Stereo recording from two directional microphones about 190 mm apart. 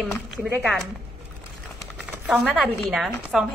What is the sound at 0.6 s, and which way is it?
Speech, centre (ahead or behind).